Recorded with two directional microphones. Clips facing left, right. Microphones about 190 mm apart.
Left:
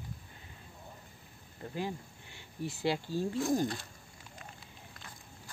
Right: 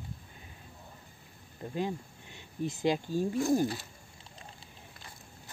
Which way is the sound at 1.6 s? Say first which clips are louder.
Right 3 dB; 20° right (ahead or behind).